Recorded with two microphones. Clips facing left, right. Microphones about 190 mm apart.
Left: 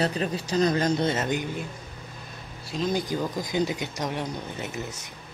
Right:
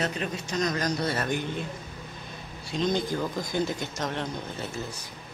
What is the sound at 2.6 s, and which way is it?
Speech, 5° left (ahead or behind).